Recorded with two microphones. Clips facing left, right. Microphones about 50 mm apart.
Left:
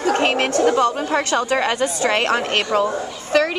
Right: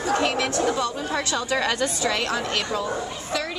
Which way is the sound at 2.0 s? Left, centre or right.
Left.